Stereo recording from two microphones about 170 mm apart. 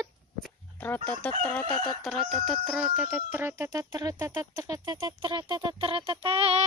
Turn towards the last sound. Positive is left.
turn(degrees=-35)  # may be behind; listen again after turning